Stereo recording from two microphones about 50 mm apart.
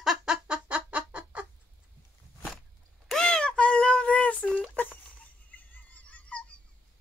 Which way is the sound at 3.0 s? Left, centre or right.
Centre.